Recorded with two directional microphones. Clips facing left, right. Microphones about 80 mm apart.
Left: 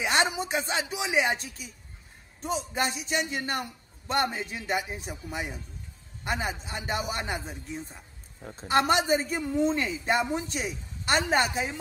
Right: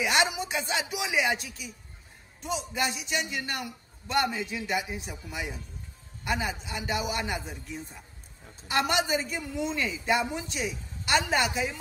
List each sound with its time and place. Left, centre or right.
0.0 s a man's voice: left